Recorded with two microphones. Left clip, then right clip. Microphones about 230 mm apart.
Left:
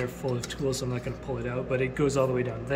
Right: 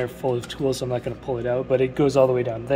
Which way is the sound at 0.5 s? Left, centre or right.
Centre.